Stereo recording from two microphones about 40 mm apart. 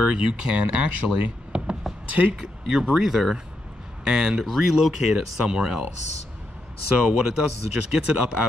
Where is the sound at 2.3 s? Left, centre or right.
Centre.